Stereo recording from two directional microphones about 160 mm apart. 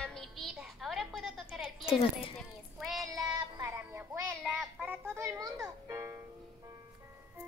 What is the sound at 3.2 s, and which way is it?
Child singing, 20° right (ahead or behind).